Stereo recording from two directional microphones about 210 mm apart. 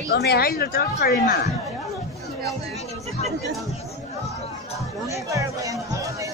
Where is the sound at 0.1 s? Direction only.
50° left (ahead or behind).